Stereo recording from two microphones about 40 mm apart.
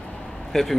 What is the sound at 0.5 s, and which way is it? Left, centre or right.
Speech, centre.